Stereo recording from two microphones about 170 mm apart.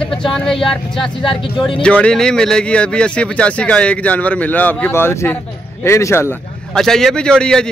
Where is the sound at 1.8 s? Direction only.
5° left (ahead or behind).